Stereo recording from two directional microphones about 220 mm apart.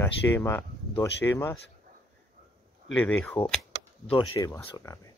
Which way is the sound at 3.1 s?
5° left (ahead or behind).